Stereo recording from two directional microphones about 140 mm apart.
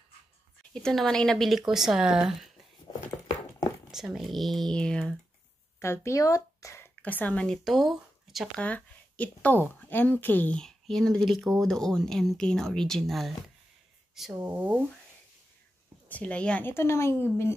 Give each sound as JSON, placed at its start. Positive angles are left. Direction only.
{"t": 0.8, "sound": "speech", "side_deg": 5}
{"t": 3.9, "sound": "speech", "side_deg": 0}
{"t": 5.8, "sound": "speech", "side_deg": 20}
{"t": 8.6, "sound": "speech", "side_deg": 10}
{"t": 14.4, "sound": "speech", "side_deg": -15}
{"t": 16.1, "sound": "speech", "side_deg": 10}